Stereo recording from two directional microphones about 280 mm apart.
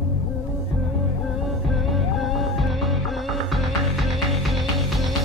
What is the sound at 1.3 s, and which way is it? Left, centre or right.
Music, centre.